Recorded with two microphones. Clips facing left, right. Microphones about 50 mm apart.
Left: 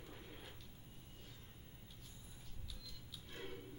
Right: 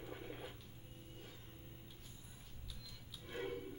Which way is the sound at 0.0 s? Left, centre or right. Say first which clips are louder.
Right 6 dB; right.